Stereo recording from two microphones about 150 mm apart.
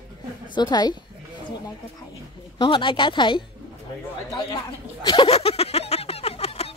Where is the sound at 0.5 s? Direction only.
30° left (ahead or behind).